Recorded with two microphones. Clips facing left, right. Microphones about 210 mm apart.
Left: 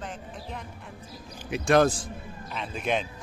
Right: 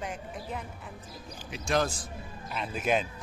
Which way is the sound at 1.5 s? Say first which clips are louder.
Left 8 dB; 60° left (ahead or behind).